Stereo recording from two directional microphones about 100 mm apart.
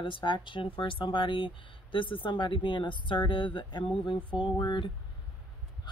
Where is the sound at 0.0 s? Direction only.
55° left (ahead or behind).